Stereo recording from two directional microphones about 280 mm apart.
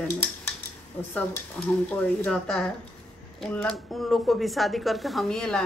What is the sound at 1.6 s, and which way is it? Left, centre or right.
Speech, centre.